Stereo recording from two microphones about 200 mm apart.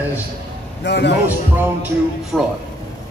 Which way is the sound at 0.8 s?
60° left (ahead or behind).